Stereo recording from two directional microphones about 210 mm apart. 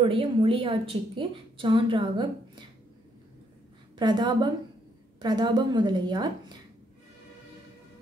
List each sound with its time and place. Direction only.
0.0 s a woman's voice: 25° right (ahead or behind)
4.0 s a woman's voice: 20° right (ahead or behind)